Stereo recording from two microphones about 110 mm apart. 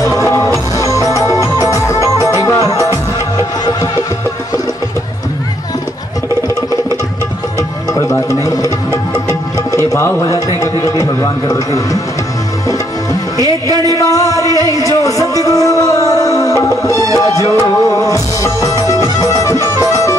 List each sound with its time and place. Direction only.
0.1 s music: 30° left (ahead or behind)
7.9 s music: 30° left (ahead or behind)
9.8 s music: 25° left (ahead or behind)
10.6 s a man's voice: 35° left (ahead or behind)
13.4 s music: 35° right (ahead or behind)
13.9 s a sound: 30° left (ahead or behind)
14.6 s music: 30° left (ahead or behind)